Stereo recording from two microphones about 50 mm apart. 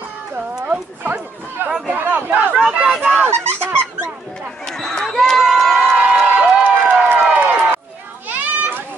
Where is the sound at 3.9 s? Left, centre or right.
Right.